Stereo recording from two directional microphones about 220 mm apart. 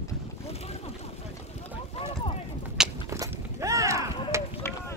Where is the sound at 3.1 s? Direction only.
15° right (ahead or behind).